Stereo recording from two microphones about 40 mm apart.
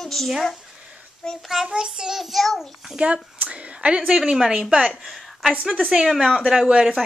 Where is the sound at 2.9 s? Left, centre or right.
Right.